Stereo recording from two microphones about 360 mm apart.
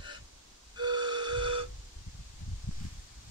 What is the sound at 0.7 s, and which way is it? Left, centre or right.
Flute, centre.